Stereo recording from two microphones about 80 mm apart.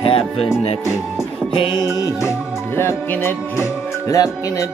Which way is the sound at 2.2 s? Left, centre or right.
Left.